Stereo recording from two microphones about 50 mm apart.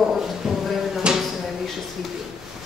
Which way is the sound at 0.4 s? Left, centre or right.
Centre.